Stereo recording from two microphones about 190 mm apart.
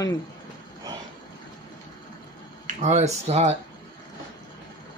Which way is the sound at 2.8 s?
35° right (ahead or behind).